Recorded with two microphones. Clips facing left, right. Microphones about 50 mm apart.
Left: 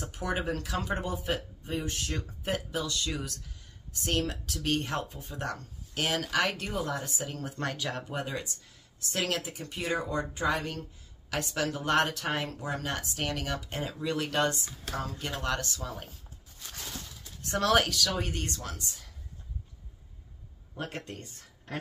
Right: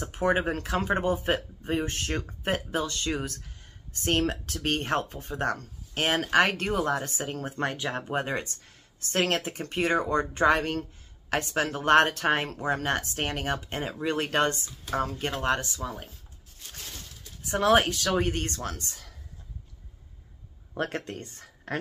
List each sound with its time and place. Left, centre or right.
0.0 s speech: right
15.6 s speech: centre
17.6 s speech: right
20.7 s speech: right